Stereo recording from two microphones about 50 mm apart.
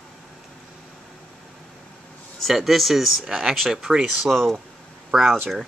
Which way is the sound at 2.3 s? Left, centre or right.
Centre.